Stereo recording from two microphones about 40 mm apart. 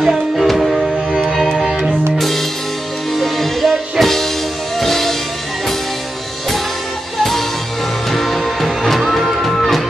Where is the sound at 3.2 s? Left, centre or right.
Centre.